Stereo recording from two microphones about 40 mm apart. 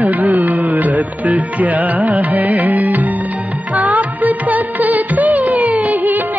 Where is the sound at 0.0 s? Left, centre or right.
Right.